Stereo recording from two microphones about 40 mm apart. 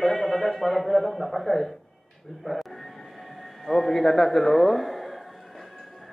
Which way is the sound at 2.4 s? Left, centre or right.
Centre.